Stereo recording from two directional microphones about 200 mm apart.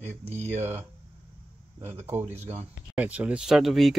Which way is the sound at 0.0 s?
30° right (ahead or behind).